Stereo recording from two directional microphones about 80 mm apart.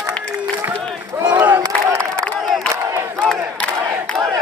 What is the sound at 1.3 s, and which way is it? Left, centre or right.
Crowd, right.